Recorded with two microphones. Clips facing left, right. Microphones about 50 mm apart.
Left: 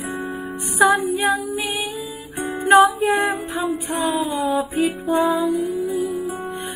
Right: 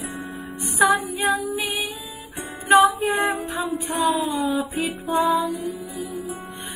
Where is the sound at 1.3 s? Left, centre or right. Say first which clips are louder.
Left 2 dB; centre.